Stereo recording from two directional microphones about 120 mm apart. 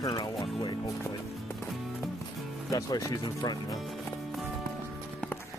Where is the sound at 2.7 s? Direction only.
30° left (ahead or behind).